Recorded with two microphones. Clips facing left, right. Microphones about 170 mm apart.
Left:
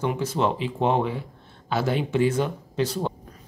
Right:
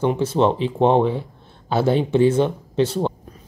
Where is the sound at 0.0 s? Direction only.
30° right (ahead or behind).